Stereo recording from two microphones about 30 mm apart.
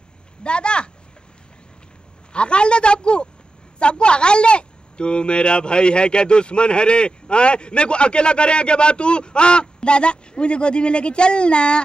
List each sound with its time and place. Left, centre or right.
0.4 s speech: left
2.3 s speech: left